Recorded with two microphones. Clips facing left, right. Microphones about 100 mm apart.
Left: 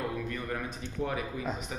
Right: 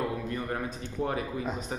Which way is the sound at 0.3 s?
30° right (ahead or behind).